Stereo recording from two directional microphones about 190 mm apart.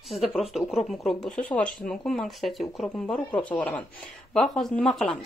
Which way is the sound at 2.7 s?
10° left (ahead or behind).